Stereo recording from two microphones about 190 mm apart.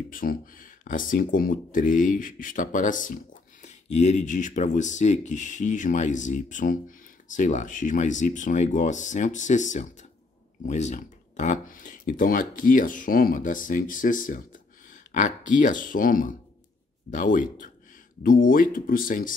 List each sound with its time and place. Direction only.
0.1 s speech: 50° left (ahead or behind)